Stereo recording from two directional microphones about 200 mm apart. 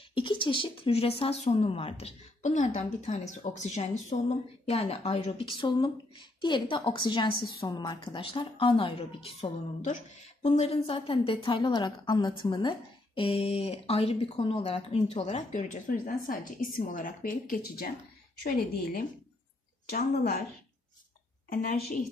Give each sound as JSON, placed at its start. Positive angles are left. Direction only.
{"t": 0.1, "sound": "speech", "side_deg": 25}
{"t": 21.5, "sound": "a woman's voice", "side_deg": 45}